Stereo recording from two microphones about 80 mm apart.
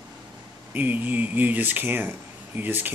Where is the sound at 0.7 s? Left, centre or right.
Right.